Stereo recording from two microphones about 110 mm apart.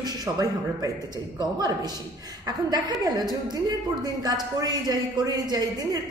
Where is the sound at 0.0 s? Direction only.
35° right (ahead or behind).